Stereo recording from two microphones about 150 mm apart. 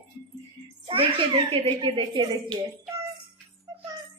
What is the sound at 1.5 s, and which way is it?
Speech, 35° right (ahead or behind).